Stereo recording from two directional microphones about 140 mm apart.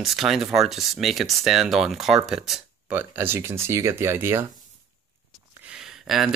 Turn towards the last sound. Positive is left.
turn(degrees=-5)  # may be behind; listen again after turning